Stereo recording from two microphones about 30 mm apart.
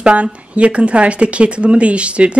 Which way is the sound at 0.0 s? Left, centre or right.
Right.